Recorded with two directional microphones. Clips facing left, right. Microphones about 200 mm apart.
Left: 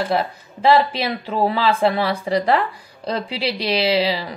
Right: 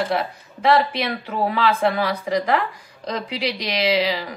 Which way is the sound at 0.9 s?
30° left (ahead or behind).